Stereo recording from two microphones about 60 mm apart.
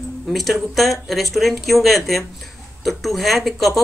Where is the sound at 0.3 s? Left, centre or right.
Centre.